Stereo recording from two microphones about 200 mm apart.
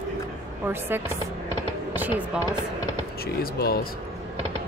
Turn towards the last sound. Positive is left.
turn(degrees=50)  # may be behind; listen again after turning